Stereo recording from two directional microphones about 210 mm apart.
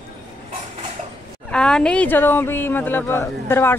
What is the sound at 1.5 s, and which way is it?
Speech, 5° left (ahead or behind).